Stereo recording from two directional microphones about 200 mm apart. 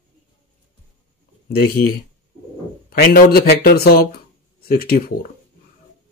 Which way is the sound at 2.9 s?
50° left (ahead or behind).